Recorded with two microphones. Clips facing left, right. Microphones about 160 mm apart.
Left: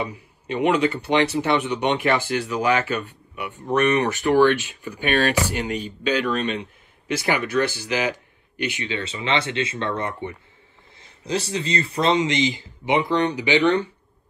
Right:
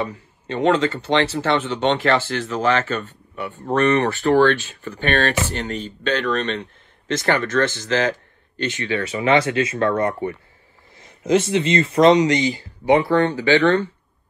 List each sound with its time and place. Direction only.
0.0 s speech: 15° left (ahead or behind)
11.0 s a sound: 30° left (ahead or behind)
11.6 s speech: 30° left (ahead or behind)